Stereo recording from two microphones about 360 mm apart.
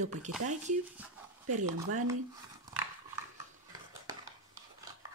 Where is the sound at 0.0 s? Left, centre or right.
Centre.